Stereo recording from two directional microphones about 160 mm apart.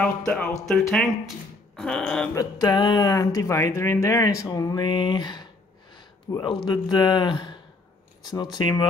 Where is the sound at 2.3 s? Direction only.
20° left (ahead or behind).